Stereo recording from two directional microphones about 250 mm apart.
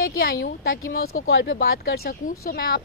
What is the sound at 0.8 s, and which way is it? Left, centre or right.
A woman's voice, left.